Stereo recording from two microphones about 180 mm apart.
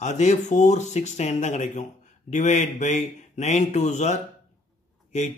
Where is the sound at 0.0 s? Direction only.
40° left (ahead or behind).